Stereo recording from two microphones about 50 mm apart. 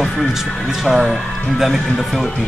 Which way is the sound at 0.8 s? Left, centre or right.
Centre.